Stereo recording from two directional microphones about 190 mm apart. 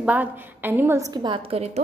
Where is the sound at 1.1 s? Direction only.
25° right (ahead or behind).